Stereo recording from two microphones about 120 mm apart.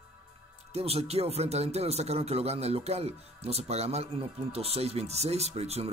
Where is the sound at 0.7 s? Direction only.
60° right (ahead or behind).